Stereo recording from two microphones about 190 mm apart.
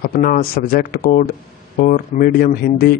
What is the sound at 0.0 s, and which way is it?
Speech, 50° left (ahead or behind).